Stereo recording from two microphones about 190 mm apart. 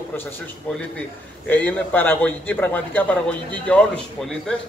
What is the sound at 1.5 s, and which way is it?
A man's voice, 10° left (ahead or behind).